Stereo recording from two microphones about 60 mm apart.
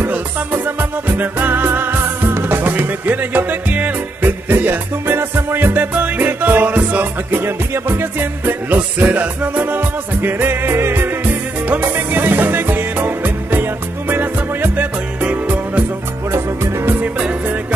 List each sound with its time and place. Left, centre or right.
0.7 s music: right